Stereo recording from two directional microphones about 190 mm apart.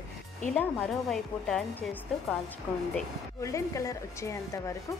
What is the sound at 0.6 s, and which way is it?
Speech, 5° left (ahead or behind).